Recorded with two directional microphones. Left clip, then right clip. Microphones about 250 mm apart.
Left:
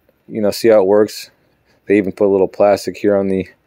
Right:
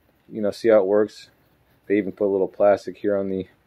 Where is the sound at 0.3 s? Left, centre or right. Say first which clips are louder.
Left 6 dB; left.